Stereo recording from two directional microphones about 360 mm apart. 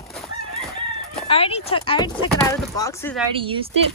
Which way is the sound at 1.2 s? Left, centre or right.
Centre.